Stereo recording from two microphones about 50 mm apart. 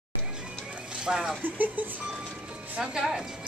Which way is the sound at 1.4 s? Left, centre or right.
Right.